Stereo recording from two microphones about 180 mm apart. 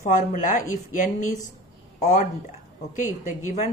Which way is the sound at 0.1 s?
45° left (ahead or behind).